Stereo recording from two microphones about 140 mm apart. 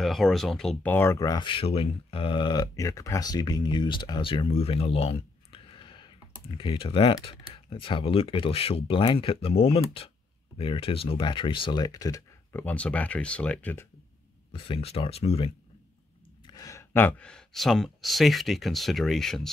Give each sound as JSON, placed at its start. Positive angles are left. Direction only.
{"t": 0.0, "sound": "speech", "side_deg": 0}
{"t": 0.9, "sound": "speech", "side_deg": 20}
{"t": 12.5, "sound": "speech", "side_deg": 10}
{"t": 14.5, "sound": "speech", "side_deg": 40}
{"t": 16.4, "sound": "speech", "side_deg": 25}